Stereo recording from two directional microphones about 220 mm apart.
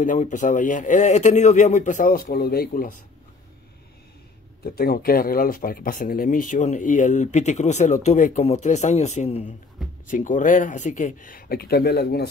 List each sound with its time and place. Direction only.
0.0 s speech: 35° left (ahead or behind)
4.6 s speech: 45° left (ahead or behind)